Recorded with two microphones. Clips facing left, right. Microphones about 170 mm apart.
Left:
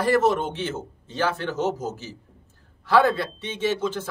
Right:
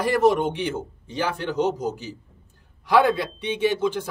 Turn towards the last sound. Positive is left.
turn(degrees=-15)  # may be behind; listen again after turning